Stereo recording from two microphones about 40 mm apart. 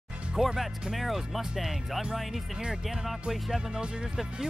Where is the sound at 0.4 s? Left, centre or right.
Centre.